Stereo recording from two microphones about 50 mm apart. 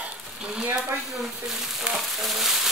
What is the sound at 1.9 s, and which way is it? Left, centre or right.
Speech, centre.